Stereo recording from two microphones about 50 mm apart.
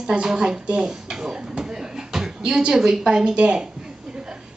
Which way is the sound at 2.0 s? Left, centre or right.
Centre.